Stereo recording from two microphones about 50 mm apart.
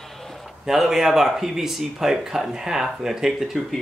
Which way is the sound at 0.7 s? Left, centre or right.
Centre.